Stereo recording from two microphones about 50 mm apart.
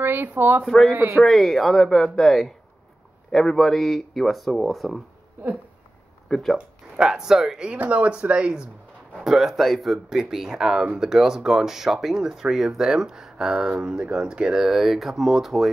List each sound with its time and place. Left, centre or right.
0.0 s speech: right
1.1 s speech: centre
5.4 s speech: right
6.2 s speech: centre
7.0 s speech: centre
7.7 s speech: right
9.2 s speech: centre